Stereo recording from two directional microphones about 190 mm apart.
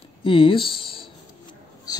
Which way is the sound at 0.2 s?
25° left (ahead or behind).